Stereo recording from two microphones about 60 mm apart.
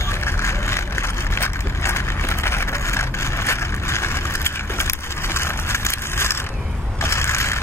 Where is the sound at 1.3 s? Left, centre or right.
Left.